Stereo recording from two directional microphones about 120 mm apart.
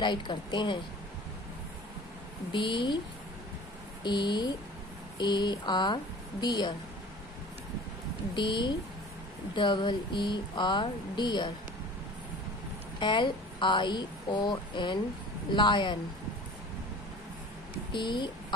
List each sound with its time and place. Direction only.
0.0 s speech: 40° left (ahead or behind)
2.5 s speech: 40° left (ahead or behind)
4.0 s speech: 40° left (ahead or behind)
8.4 s speech: 40° left (ahead or behind)
13.0 s speech: 40° left (ahead or behind)
17.9 s speech: 40° left (ahead or behind)